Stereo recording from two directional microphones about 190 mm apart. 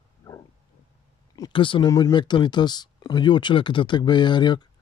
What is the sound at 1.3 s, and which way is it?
Speech, 25° left (ahead or behind).